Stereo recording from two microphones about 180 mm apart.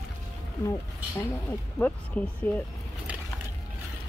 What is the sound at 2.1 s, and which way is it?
Speech, 5° left (ahead or behind).